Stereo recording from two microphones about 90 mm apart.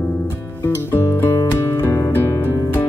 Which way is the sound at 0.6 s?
25° left (ahead or behind).